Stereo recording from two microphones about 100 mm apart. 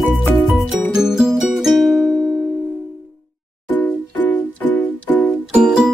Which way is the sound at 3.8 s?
15° left (ahead or behind).